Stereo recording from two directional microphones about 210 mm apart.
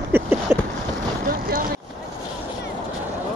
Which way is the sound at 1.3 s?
45° right (ahead or behind).